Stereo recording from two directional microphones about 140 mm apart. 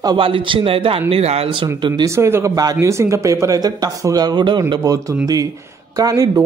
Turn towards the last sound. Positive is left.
turn(degrees=-25)  # may be behind; listen again after turning